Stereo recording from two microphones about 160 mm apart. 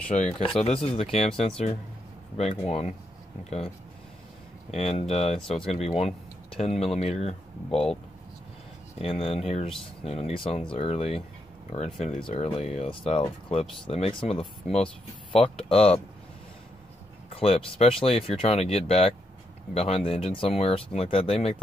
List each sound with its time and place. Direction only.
0.7 s speech: 40° left (ahead or behind)
8.9 s speech: 40° left (ahead or behind)
17.3 s speech: 35° left (ahead or behind)